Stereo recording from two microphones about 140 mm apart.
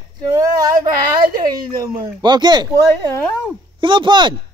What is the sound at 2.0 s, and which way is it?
Speech, 35° right (ahead or behind).